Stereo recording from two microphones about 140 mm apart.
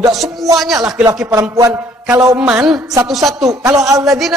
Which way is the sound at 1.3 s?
20° right (ahead or behind).